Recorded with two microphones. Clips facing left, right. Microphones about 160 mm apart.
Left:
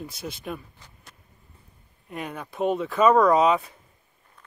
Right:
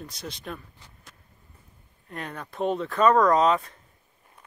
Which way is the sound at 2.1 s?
10° left (ahead or behind).